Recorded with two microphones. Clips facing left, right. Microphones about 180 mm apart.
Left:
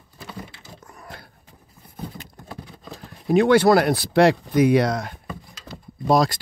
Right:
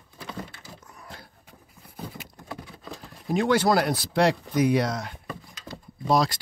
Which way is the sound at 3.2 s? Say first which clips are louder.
Left 7 dB; 65° left (ahead or behind).